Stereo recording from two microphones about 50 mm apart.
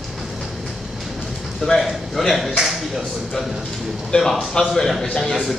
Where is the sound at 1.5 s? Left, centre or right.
Centre.